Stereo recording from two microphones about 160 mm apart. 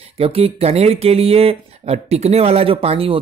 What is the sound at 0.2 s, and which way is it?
Speech, 40° right (ahead or behind).